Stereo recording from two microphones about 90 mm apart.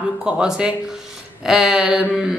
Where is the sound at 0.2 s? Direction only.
10° right (ahead or behind).